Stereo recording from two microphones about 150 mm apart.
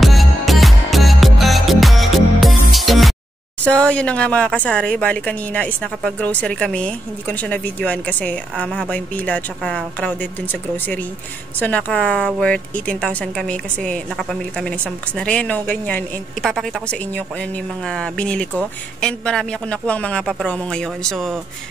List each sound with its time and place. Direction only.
0.0 s music: centre (ahead or behind)
3.6 s speech: 10° left (ahead or behind)